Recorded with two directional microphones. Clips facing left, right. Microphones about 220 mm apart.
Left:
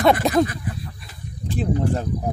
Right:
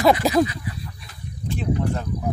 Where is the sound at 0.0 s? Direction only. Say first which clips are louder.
Even; centre (ahead or behind).